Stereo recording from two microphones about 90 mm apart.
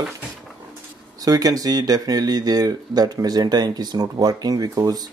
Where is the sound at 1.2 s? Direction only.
45° right (ahead or behind).